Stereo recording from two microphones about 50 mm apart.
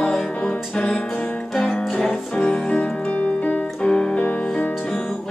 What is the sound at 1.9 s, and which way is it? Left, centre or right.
Music, centre.